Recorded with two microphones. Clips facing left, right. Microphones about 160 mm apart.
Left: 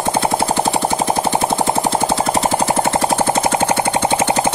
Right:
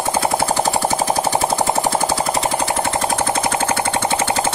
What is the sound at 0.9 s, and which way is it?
Machine gun, 5° right (ahead or behind).